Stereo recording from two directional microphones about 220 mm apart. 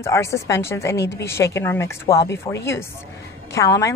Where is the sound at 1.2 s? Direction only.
10° left (ahead or behind).